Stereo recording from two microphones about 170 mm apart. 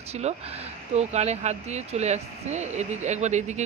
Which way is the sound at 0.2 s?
40° right (ahead or behind).